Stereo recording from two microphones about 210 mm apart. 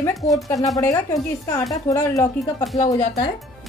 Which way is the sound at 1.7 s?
15° left (ahead or behind).